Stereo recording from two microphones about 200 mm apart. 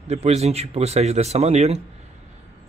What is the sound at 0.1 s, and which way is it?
Speech, 30° right (ahead or behind).